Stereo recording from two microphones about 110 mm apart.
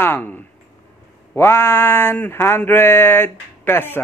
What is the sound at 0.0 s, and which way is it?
Speech, 20° left (ahead or behind).